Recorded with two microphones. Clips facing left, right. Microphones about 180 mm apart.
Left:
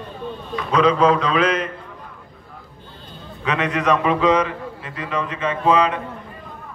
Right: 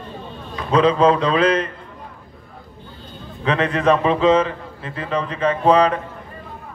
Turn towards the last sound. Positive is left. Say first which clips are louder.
# right 3 dB
turn(degrees=-35)  # may be behind; listen again after turning